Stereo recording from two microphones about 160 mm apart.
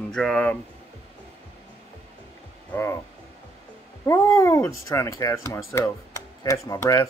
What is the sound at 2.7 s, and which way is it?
Speech, 15° left (ahead or behind).